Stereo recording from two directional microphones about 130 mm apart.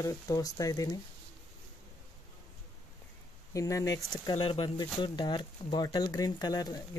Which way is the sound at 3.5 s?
25° left (ahead or behind).